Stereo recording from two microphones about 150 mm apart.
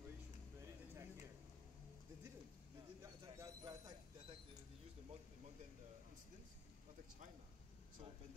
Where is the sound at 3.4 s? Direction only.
25° right (ahead or behind).